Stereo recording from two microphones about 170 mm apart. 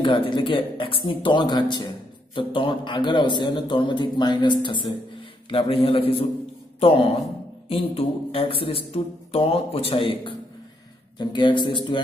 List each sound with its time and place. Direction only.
0.0 s a man's voice: 30° left (ahead or behind)
7.6 s a man's voice: 35° left (ahead or behind)